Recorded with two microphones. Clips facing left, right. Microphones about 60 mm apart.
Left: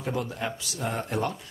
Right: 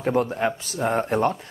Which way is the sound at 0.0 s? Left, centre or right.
Right.